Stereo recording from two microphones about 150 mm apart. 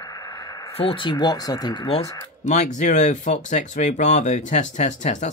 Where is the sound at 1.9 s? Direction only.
45° left (ahead or behind).